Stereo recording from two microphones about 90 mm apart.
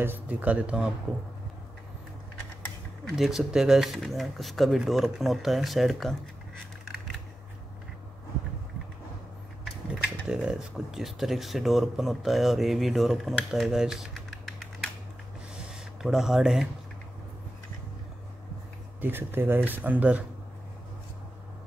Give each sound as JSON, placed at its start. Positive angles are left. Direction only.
{"t": 0.0, "sound": "speech", "side_deg": -20}
{"t": 3.2, "sound": "speech", "side_deg": -5}
{"t": 6.8, "sound": "scissors", "side_deg": 0}
{"t": 10.2, "sound": "speech", "side_deg": -10}
{"t": 18.9, "sound": "speech", "side_deg": -20}